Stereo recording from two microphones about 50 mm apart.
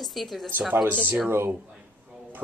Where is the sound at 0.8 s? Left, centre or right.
Right.